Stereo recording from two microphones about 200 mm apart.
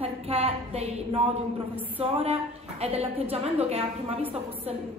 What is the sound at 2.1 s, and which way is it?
A woman's voice, 30° right (ahead or behind).